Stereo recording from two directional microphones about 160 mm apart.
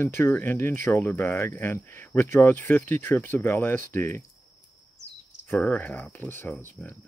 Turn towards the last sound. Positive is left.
turn(degrees=15)  # may be behind; listen again after turning